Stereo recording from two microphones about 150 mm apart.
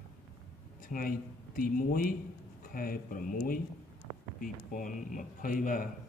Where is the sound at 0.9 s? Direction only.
70° left (ahead or behind).